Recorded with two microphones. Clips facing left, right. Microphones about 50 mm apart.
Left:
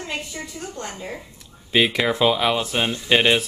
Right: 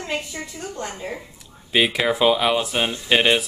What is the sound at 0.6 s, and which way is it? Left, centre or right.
Speech, centre.